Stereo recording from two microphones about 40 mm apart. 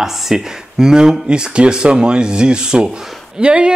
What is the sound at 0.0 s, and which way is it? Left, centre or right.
Speech, centre.